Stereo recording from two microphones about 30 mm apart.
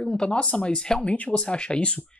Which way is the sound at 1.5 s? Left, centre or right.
Left.